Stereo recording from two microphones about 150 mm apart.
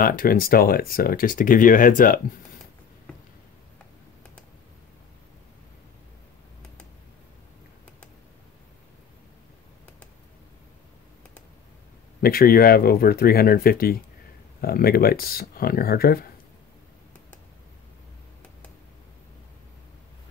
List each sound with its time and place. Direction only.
0.0 s speech: 70° left (ahead or behind)
12.2 s speech: 80° left